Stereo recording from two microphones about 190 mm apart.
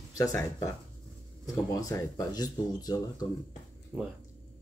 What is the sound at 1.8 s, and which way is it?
Speech, 15° left (ahead or behind).